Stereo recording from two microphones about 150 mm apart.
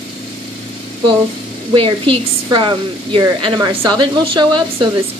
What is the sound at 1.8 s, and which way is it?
A woman's voice, 35° right (ahead or behind).